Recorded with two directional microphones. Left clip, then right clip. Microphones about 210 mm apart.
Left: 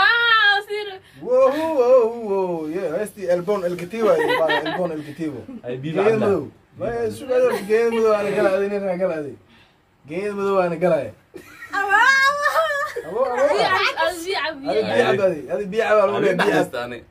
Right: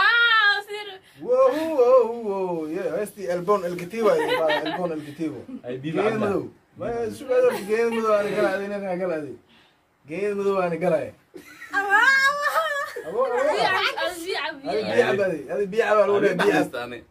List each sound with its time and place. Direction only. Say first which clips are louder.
0.0 s child singing: left 2 dB; centre (ahead or behind)
1.4 s a sound: left 1 dB; 5° right (ahead or behind)
4.2 s speech: left 3 dB; 5° right (ahead or behind)
6.9 s a man's voice: left 2 dB; 10° right (ahead or behind)
10.1 s a man's voice: left 3 dB; 10° right (ahead or behind)
11.7 s a sound: left 2 dB; 5° left (ahead or behind)
14.0 s a woman's voice: left 5 dB; 5° right (ahead or behind)
16.1 s speech: left 1 dB; 20° left (ahead or behind)